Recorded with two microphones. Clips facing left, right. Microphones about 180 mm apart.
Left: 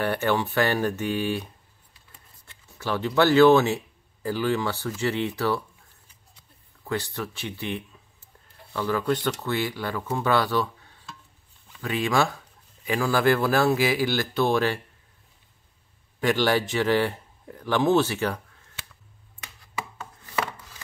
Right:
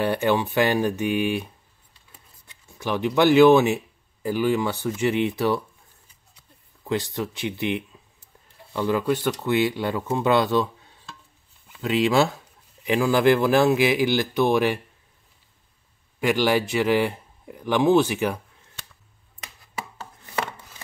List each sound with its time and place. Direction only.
0.0 s speech: 15° right (ahead or behind)
6.9 s speech: 20° right (ahead or behind)
11.8 s speech: 20° right (ahead or behind)
16.2 s speech: 10° right (ahead or behind)